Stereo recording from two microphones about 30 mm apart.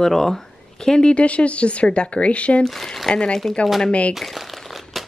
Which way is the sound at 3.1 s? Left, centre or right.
Left.